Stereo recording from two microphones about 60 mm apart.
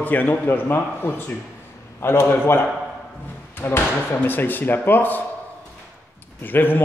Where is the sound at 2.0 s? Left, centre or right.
Left.